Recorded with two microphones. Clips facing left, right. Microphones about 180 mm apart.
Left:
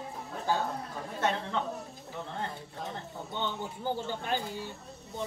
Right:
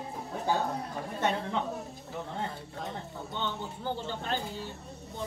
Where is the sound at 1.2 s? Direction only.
15° right (ahead or behind).